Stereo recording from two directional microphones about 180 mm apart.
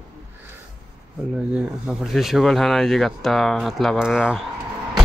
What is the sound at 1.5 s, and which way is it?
Speech, 5° right (ahead or behind).